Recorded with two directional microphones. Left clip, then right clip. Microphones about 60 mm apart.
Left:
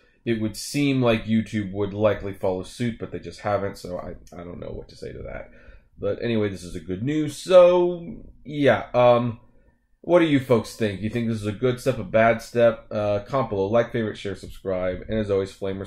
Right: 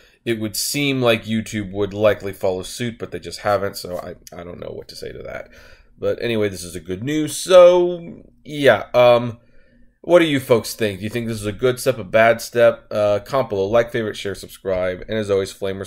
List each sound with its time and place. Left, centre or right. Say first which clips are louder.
0.2 s speech: right 4 dB; right